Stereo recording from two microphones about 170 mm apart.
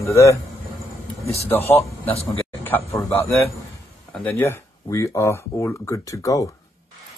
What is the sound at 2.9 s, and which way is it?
Speech, 10° left (ahead or behind).